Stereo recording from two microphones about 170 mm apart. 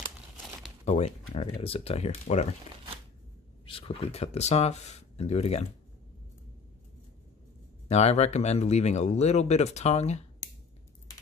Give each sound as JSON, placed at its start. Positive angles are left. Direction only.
{"t": 0.8, "sound": "speech", "side_deg": 40}
{"t": 3.6, "sound": "speech", "side_deg": 30}
{"t": 7.9, "sound": "speech", "side_deg": 40}